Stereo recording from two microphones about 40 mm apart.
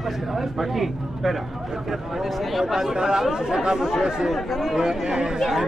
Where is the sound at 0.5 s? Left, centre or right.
Centre.